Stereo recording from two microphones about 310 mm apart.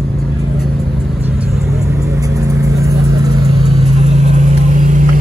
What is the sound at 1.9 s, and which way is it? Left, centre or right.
Vehicle, centre.